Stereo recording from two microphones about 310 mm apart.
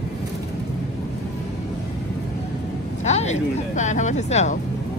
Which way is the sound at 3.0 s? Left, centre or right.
Left.